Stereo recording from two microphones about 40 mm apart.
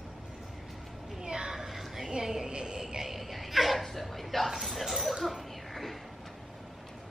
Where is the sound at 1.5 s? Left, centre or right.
Centre.